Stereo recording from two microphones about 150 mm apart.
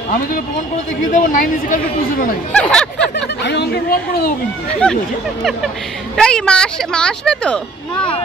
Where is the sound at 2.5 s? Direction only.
5° left (ahead or behind).